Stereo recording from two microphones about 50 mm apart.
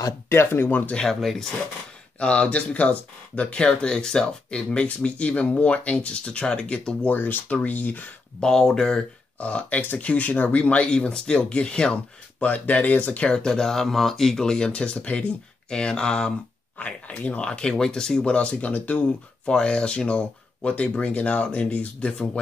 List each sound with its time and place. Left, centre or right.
0.3 s speech: left
0.7 s speech: left
0.9 s speech: centre
2.1 s speech: left
7.1 s speech: left
8.4 s speech: centre
9.4 s speech: left
10.6 s speech: left
12.4 s speech: left
13.3 s speech: centre
16.7 s speech: left
17.5 s speech: centre
19.4 s speech: centre